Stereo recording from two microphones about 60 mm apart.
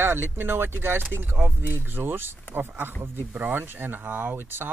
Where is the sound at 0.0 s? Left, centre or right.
Right.